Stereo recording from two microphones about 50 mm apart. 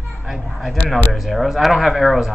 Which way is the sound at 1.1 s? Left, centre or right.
Centre.